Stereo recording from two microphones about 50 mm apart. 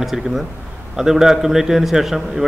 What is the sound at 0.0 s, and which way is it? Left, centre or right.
A man's voice, centre.